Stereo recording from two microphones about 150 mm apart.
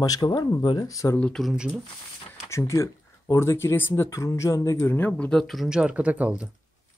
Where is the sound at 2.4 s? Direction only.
20° left (ahead or behind); by 6.5 s 10° right (ahead or behind).